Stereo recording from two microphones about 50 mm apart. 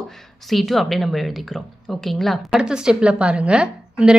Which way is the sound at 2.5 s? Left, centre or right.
Centre.